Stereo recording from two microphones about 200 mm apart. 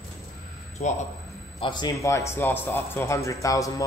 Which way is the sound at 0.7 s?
35° left (ahead or behind).